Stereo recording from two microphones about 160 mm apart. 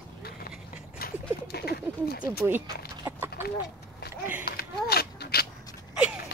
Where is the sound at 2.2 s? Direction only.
20° right (ahead or behind).